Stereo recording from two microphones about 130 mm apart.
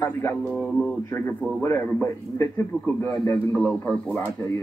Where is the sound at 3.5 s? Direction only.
10° left (ahead or behind).